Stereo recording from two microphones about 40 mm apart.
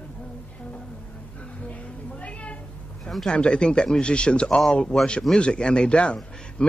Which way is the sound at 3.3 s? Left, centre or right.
Left.